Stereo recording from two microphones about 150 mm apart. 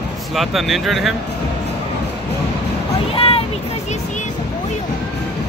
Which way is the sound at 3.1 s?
40° left (ahead or behind).